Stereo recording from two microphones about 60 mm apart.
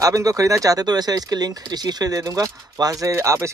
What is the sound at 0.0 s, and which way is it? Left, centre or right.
Speech, right.